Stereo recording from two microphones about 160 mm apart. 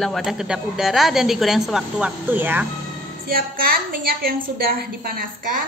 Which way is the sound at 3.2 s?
65° right (ahead or behind).